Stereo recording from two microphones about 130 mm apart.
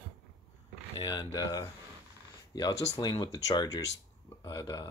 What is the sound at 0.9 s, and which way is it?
Speech, 30° left (ahead or behind).